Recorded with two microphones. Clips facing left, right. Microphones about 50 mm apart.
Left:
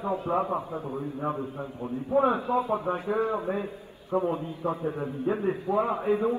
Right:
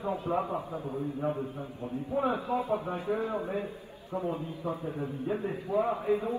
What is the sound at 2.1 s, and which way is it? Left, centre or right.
A man's voice, left.